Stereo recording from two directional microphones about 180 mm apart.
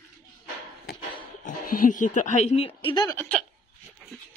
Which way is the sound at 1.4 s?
50° left (ahead or behind).